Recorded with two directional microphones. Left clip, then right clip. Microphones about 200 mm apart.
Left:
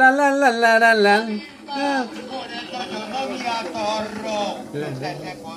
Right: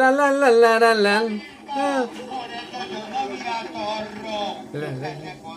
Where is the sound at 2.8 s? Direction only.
30° left (ahead or behind).